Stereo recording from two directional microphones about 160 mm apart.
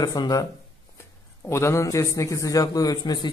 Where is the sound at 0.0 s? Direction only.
25° left (ahead or behind).